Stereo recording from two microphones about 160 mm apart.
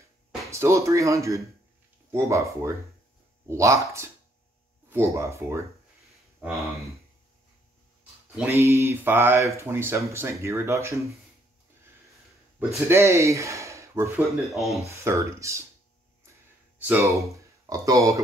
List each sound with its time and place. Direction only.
0.5 s speech: 20° right (ahead or behind)
6.4 s speech: centre (ahead or behind)
8.5 s speech: 15° right (ahead or behind)
12.5 s speech: 15° right (ahead or behind)
14.4 s speech: centre (ahead or behind)
14.9 s speech: 20° right (ahead or behind)
16.8 s speech: 15° right (ahead or behind)